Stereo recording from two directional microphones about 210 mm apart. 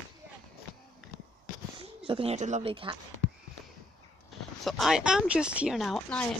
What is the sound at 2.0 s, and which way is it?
Speech, 25° right (ahead or behind).